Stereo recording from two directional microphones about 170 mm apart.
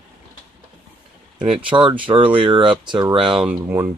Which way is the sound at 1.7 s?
30° right (ahead or behind).